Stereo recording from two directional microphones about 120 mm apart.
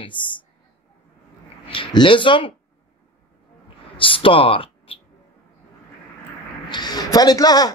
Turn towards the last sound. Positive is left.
turn(degrees=35)  # may be behind; listen again after turning